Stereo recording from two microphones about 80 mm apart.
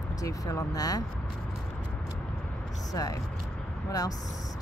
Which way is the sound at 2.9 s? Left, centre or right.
Left.